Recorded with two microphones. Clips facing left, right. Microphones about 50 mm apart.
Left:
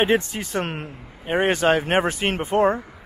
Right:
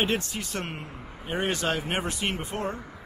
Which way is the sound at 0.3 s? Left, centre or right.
Left.